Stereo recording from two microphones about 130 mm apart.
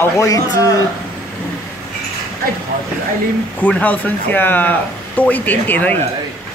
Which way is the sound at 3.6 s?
15° left (ahead or behind).